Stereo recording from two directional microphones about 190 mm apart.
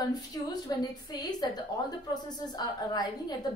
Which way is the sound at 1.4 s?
20° left (ahead or behind).